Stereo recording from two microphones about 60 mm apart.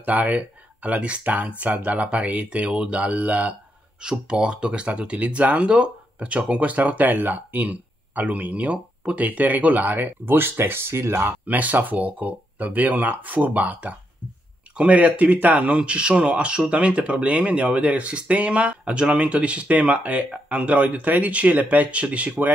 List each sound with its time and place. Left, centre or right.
0.0 s speech: right
4.0 s speech: centre; by 11.3 s right
11.4 s speech: right